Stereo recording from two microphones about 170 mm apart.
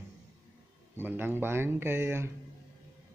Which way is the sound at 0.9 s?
10° right (ahead or behind).